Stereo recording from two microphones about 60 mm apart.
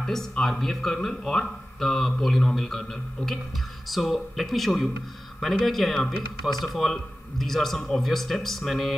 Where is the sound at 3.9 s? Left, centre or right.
Centre.